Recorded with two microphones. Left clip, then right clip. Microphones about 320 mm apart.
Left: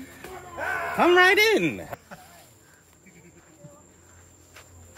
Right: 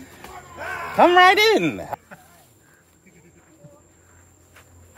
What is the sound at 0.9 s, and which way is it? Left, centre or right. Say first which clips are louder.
Speech: right 5 dB; right.